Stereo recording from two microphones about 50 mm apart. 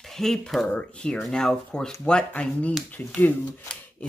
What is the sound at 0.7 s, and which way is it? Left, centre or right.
Speech, centre.